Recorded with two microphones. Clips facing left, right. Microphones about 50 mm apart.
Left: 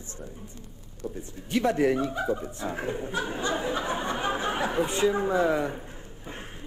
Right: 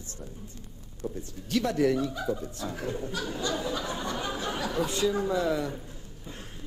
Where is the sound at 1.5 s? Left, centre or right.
Left.